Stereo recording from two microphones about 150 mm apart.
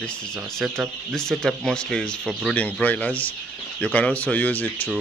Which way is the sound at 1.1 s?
5° left (ahead or behind).